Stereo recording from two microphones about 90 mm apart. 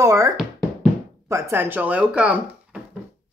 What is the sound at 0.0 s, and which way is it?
Speech, 35° right (ahead or behind).